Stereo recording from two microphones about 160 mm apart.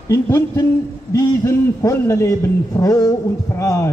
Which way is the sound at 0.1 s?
20° left (ahead or behind).